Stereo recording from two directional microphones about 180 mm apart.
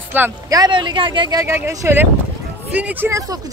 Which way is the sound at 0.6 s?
25° right (ahead or behind).